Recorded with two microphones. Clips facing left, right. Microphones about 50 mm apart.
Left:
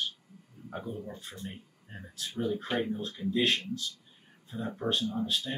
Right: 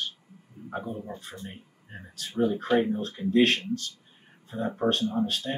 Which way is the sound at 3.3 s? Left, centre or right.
Right.